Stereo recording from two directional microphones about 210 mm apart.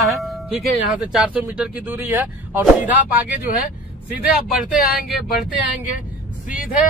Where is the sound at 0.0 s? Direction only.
Centre (ahead or behind).